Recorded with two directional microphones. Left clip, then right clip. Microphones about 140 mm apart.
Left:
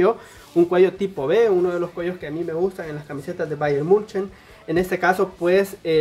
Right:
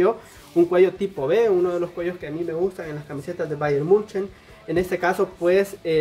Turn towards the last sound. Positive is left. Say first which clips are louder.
# left 1 dB
turn(degrees=20)  # may be behind; listen again after turning